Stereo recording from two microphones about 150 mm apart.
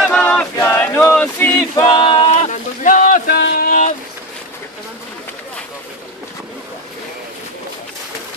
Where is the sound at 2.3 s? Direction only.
50° left (ahead or behind).